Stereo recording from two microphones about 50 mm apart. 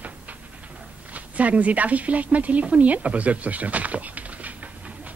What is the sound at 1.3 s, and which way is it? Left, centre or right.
A woman's voice, right.